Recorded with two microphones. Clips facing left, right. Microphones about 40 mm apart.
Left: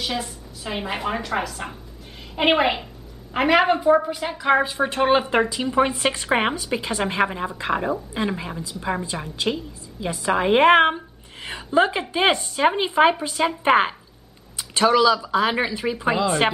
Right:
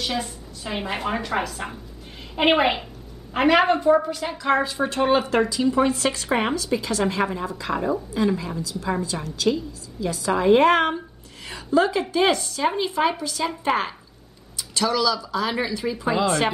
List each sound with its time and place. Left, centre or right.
0.0 s a woman's voice: centre; by 16.2 s left